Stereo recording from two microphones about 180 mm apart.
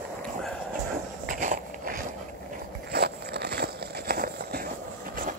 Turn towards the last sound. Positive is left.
turn(degrees=-55)  # may be behind; listen again after turning